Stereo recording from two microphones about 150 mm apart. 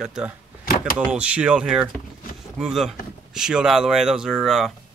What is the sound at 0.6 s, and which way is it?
Power windows, 70° left (ahead or behind).